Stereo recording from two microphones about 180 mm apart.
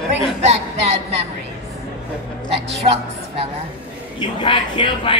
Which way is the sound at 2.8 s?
35° right (ahead or behind).